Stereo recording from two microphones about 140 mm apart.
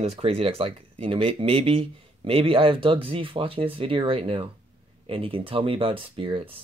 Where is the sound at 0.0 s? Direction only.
45° right (ahead or behind).